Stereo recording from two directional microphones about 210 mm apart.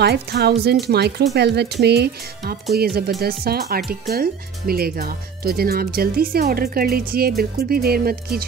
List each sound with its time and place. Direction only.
0.0 s speech: 50° right (ahead or behind)